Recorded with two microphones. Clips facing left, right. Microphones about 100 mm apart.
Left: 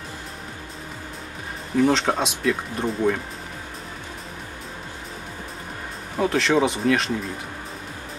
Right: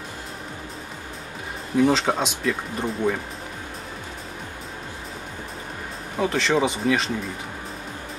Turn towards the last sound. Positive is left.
turn(degrees=0)  # may be behind; listen again after turning